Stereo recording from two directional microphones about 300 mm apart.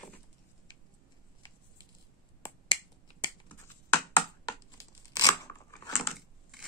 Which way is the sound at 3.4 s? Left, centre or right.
Centre.